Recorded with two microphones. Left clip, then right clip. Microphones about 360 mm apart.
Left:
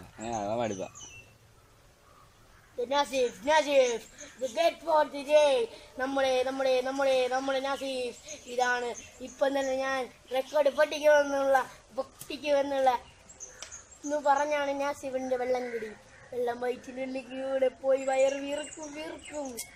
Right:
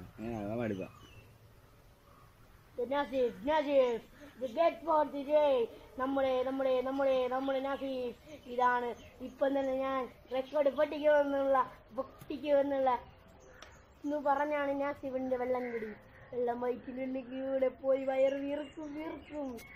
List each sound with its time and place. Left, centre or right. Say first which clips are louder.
0.2 s fowl: left 8 dB; left
2.9 s a woman's voice: left 5 dB; left
14.1 s a woman's voice: left 5 dB; left